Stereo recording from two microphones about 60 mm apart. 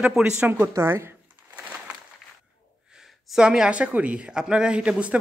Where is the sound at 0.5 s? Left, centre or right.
Right.